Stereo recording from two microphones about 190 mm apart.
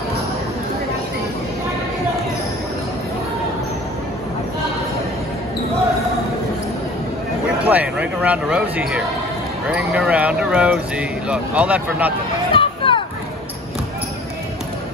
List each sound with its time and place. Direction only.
7.6 s speech: 10° right (ahead or behind)
12.5 s children playing: 25° left (ahead or behind)